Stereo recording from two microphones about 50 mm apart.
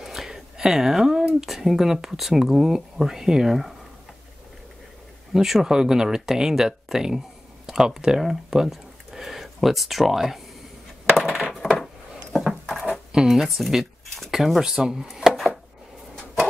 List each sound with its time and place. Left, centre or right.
0.0 s a sound: centre
1.4 s speech: centre
5.3 s speech: centre
11.2 s coin: right
12.4 s a sound: centre
13.4 s speech: centre
15.3 s chopping: centre